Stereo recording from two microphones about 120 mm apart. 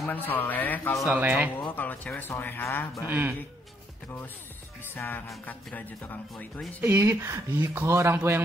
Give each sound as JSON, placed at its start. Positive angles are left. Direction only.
{"t": 0.1, "sound": "speech", "side_deg": 15}
{"t": 1.1, "sound": "speech", "side_deg": -10}
{"t": 1.7, "sound": "speech", "side_deg": 15}
{"t": 3.1, "sound": "speech", "side_deg": -15}
{"t": 4.8, "sound": "speech", "side_deg": 15}
{"t": 6.8, "sound": "speech", "side_deg": -15}